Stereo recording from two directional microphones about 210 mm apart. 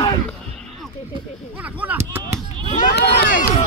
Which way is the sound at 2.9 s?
50° left (ahead or behind).